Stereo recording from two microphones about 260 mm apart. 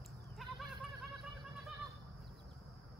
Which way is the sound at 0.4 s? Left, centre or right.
Centre.